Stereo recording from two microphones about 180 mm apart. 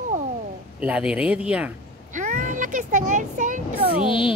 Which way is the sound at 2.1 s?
45° right (ahead or behind).